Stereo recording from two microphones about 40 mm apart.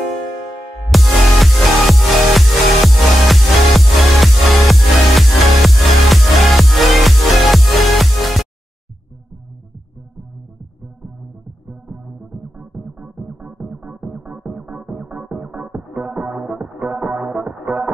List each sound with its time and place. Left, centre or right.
0.8 s music: centre
12.5 s music: right